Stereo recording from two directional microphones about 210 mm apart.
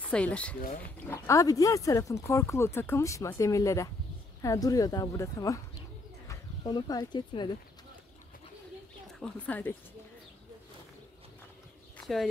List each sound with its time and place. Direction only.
0.1 s speech: 5° left (ahead or behind); by 7.5 s 20° left (ahead or behind)
9.0 s speech: 5° left (ahead or behind)
12.0 s a sound: centre (ahead or behind)